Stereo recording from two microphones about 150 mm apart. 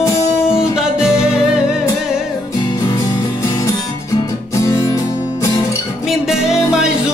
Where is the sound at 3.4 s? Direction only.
20° left (ahead or behind).